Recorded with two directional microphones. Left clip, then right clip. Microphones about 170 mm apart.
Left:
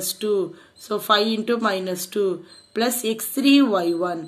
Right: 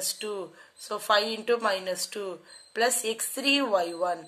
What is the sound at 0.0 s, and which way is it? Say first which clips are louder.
A woman's voice: left 10 dB; 5° left (ahead or behind).